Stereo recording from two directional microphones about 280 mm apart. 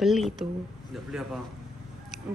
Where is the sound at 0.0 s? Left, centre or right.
Centre.